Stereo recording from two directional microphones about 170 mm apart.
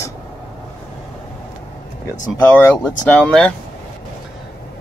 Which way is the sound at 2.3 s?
15° left (ahead or behind).